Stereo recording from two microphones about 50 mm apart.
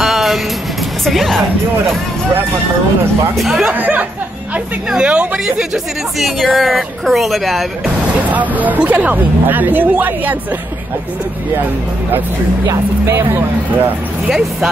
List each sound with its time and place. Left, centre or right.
0.0 s music: centre
1.0 s speech: centre
3.3 s speech: centre
3.7 s speech: right
4.9 s speech: right
6.1 s speech: centre
8.3 s speech: right
13.0 s speech: right